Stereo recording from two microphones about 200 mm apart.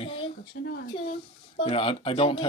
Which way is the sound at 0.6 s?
60° left (ahead or behind).